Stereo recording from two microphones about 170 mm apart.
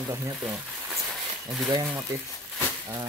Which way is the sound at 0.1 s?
15° right (ahead or behind).